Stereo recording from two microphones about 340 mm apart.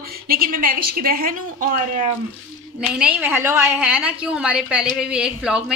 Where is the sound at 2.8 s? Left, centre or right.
Centre.